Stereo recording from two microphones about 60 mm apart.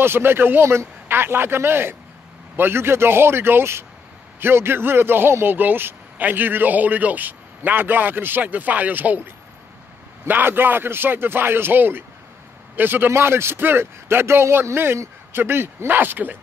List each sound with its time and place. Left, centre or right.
0.0 s a man's voice: right
10.2 s a man's voice: right
13.1 s a man's voice: right